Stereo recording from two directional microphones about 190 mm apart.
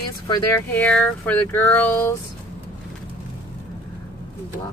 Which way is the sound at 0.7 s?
5° left (ahead or behind).